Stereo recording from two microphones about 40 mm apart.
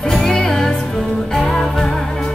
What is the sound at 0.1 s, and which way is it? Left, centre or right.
Music, centre.